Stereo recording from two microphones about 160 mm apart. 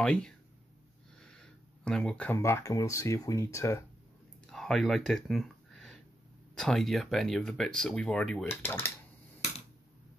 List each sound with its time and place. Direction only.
0.0 s speech: 5° left (ahead or behind)
1.2 s a sound: 5° left (ahead or behind)
2.3 s speech: 15° left (ahead or behind)
4.5 s a sound: centre (ahead or behind)
6.5 s speech: 5° left (ahead or behind)
8.5 s speech: 15° left (ahead or behind)